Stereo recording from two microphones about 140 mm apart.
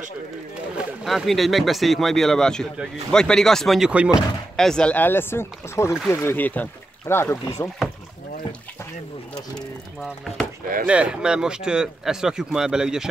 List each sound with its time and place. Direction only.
0.7 s speech: centre (ahead or behind)
4.6 s speech: 5° left (ahead or behind)
10.0 s speech: centre (ahead or behind)